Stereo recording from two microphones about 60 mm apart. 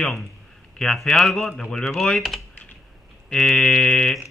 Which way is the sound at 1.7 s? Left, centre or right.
Centre.